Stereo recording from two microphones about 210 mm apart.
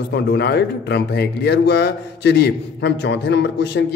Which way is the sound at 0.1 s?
50° left (ahead or behind).